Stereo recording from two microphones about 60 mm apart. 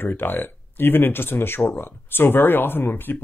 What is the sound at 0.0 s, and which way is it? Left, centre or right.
Speech, left.